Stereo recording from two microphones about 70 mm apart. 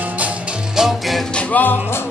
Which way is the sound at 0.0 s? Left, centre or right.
Right.